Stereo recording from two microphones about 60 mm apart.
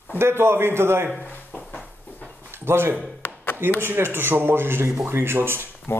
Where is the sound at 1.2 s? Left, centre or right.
Left.